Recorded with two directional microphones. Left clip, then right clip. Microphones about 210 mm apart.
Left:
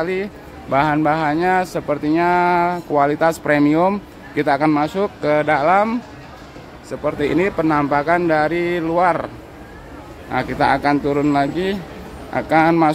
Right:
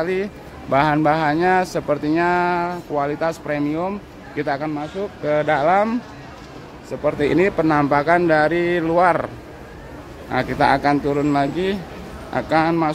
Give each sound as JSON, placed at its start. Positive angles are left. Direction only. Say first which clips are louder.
{"t": 0.0, "sound": "speech", "louder": "even", "side_deg": 5}
{"t": 5.2, "sound": "speech", "louder": "left 1 dB", "side_deg": 10}
{"t": 10.3, "sound": "speech", "louder": "even", "side_deg": 0}